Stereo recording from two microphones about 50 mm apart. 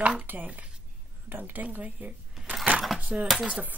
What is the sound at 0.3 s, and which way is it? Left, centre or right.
Speech, right.